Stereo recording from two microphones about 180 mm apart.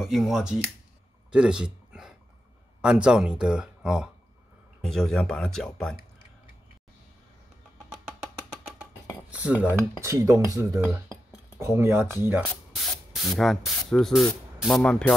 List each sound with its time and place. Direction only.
0.0 s speech: centre (ahead or behind)
1.3 s dog: 5° right (ahead or behind)
2.8 s speech: 5° right (ahead or behind)
9.5 s speech: 5° right (ahead or behind)
10.0 s speech: 15° right (ahead or behind)
12.7 s speech: centre (ahead or behind)